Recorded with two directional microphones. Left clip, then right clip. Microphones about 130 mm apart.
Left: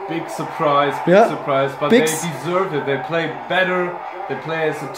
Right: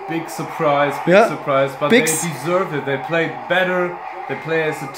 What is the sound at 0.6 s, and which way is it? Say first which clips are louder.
Speech: even; 80° right.